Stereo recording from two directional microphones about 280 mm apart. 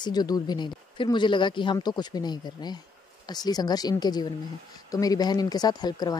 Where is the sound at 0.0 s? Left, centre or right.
Centre.